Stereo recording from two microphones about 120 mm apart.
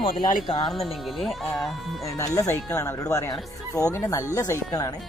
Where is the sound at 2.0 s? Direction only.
25° left (ahead or behind).